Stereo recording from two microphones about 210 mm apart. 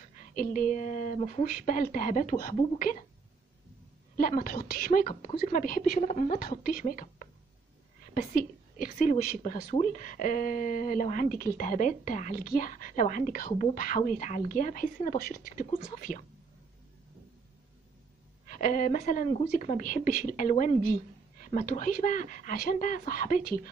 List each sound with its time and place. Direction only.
0.3 s speech: 40° left (ahead or behind)
4.2 s a woman's voice: 40° left (ahead or behind)
18.5 s speech: 40° left (ahead or behind)